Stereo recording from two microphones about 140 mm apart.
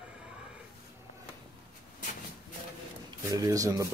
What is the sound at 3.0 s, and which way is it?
Speech, 25° right (ahead or behind).